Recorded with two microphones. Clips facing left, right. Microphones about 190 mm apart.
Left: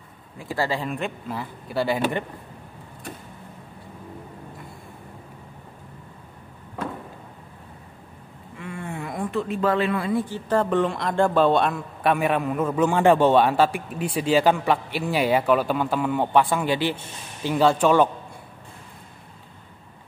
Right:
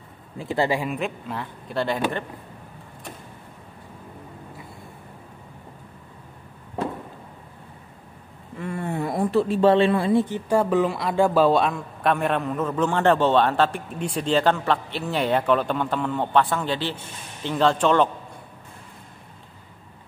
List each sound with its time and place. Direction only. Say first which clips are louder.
0.4 s speech: right 3 dB; 20° right (ahead or behind)
0.8 s speech: right 1 dB; centre (ahead or behind)
8.5 s speech: right 5 dB; 40° right (ahead or behind); by 18.1 s 10° left (ahead or behind)